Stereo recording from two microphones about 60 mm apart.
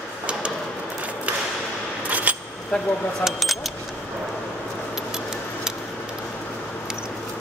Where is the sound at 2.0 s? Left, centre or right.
Right.